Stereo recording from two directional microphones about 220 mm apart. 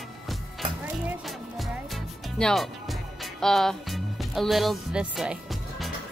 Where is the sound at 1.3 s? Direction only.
Centre (ahead or behind).